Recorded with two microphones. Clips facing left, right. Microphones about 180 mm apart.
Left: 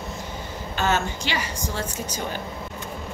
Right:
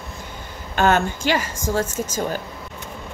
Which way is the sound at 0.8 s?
55° right (ahead or behind).